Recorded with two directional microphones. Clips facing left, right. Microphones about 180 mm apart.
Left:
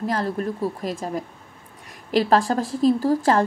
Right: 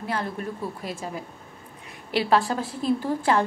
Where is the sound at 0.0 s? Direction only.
40° left (ahead or behind).